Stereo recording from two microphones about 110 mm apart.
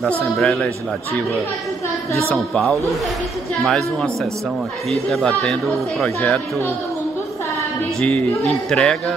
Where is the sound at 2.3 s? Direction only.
Centre (ahead or behind).